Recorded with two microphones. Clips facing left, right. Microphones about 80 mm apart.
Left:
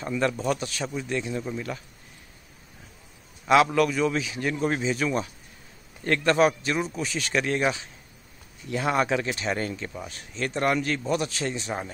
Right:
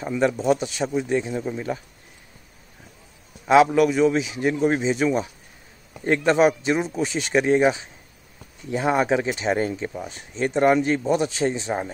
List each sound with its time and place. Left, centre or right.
0.0 s a man's voice: centre
0.6 s speech: right
3.4 s a man's voice: centre
4.8 s speech: right